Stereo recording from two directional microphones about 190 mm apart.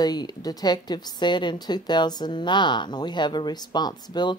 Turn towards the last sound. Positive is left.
turn(degrees=20)  # may be behind; listen again after turning